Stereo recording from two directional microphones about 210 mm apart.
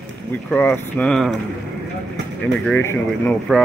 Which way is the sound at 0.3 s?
10° left (ahead or behind).